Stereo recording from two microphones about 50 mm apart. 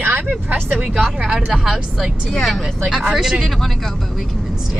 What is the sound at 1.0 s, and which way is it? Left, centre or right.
Speech, centre.